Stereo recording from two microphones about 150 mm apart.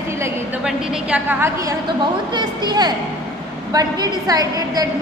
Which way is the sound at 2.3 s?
30° right (ahead or behind).